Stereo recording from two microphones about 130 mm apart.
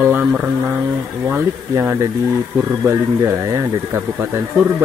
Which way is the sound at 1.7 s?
20° right (ahead or behind).